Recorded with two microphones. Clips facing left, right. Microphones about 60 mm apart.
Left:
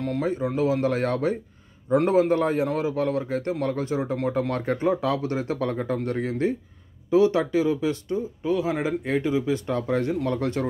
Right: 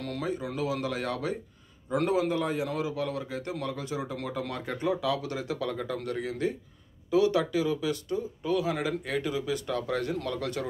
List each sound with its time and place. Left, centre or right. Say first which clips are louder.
0.0 s speech: left 7 dB; left